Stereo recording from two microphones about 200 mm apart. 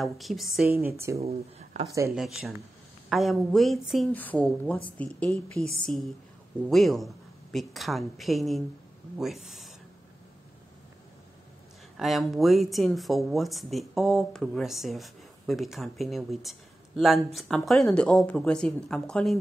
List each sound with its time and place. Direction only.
0.0 s speech: centre (ahead or behind)
0.9 s speech: 15° right (ahead or behind)
1.2 s speech: 35° right (ahead or behind)
2.1 s speech: centre (ahead or behind)
12.0 s speech: centre (ahead or behind)